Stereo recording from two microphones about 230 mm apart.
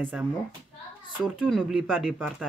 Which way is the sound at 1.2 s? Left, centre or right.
Centre.